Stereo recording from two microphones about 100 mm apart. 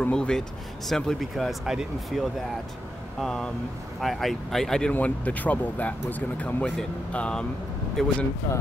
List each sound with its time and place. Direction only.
0.0 s speech: 10° left (ahead or behind)
4.9 s speech: 15° left (ahead or behind)